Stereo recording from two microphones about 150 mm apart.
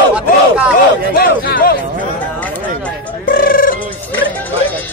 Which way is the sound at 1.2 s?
85° left.